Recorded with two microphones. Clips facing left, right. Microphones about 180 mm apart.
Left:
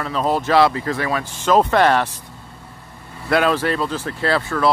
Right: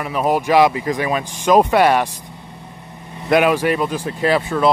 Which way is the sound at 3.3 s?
15° right (ahead or behind).